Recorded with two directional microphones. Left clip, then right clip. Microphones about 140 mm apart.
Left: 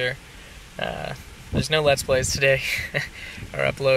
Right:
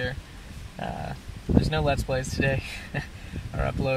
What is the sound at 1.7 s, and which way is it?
Speech, 15° left (ahead or behind).